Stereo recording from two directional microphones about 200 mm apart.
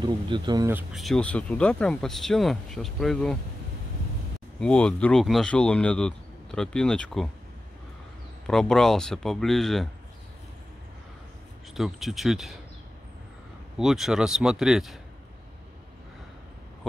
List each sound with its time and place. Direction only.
0.0 s speech: 20° right (ahead or behind)
0.7 s speech: 10° right (ahead or behind)
1.0 s speech: 5° left (ahead or behind)
4.6 s speech: 5° left (ahead or behind)
8.5 s speech: centre (ahead or behind)
11.7 s speech: centre (ahead or behind)
13.7 s speech: centre (ahead or behind)